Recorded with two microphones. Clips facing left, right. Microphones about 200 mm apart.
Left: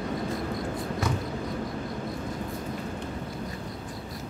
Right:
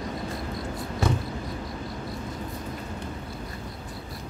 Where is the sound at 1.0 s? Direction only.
30° right (ahead or behind).